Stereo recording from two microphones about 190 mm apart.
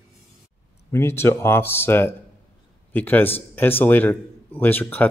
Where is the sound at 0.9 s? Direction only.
10° left (ahead or behind).